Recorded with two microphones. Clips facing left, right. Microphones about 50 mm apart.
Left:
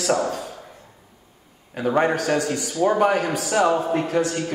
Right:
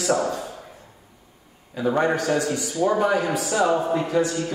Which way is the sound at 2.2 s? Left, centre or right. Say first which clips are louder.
Even; left.